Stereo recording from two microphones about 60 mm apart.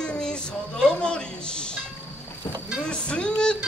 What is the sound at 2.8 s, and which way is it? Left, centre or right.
Speech, centre.